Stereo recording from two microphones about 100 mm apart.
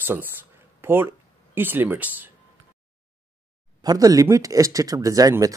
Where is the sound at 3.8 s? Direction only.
40° right (ahead or behind).